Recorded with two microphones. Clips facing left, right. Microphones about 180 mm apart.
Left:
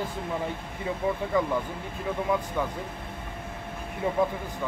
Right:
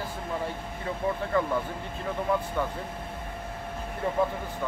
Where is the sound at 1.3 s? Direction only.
15° left (ahead or behind).